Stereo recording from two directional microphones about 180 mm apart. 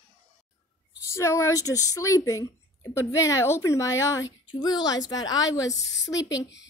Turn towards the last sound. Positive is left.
turn(degrees=20)  # may be behind; listen again after turning